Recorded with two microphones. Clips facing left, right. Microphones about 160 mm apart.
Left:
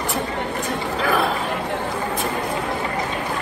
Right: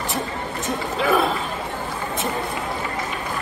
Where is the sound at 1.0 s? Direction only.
Centre (ahead or behind).